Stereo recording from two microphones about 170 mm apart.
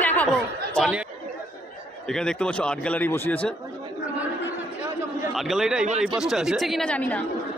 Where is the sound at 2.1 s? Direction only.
5° left (ahead or behind).